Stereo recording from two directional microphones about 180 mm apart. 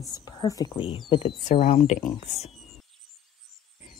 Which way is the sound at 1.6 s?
40° left (ahead or behind).